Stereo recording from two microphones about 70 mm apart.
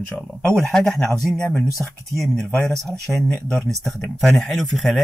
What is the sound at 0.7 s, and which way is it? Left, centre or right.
Speech, centre.